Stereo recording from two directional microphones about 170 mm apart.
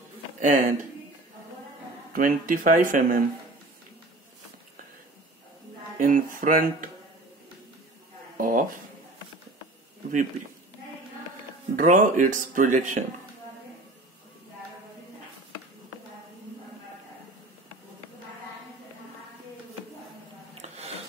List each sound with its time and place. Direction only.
0.4 s speech: 45° right (ahead or behind)
2.1 s speech: 55° right (ahead or behind)
5.9 s speech: 50° right (ahead or behind)
8.4 s speech: 55° right (ahead or behind)
11.7 s speech: 50° right (ahead or behind)
20.6 s a sound: 40° right (ahead or behind)